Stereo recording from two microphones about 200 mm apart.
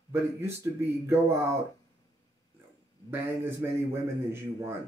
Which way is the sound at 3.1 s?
10° right (ahead or behind).